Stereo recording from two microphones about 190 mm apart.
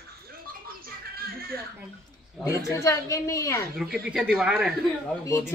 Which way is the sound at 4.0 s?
5° right (ahead or behind).